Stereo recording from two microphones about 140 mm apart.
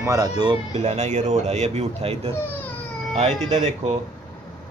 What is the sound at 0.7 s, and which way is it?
Speech, 50° right (ahead or behind).